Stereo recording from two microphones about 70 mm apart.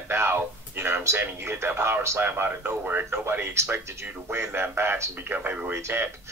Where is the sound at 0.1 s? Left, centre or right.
Right.